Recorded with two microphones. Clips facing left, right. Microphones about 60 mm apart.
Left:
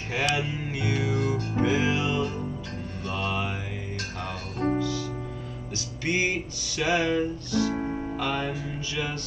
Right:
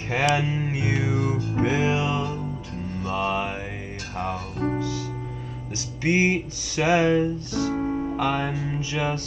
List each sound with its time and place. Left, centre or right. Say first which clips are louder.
0.1 s speech: right 5 dB; right
1.6 s music: right 2 dB; right
4.7 s music: even; right
6.0 s music: right 5 dB; right
7.7 s music: right 4 dB; centre
8.2 s music: right 3 dB; centre